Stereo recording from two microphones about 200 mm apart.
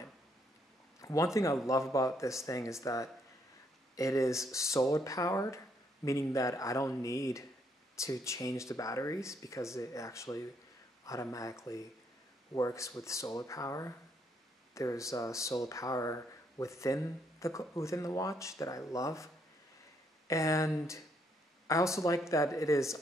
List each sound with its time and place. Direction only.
1.0 s speech: 15° left (ahead or behind)